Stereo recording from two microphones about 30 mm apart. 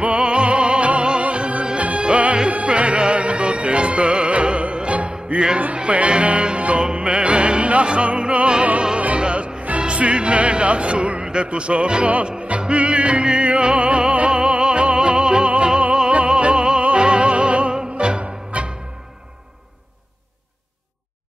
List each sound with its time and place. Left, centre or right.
0.0 s music: right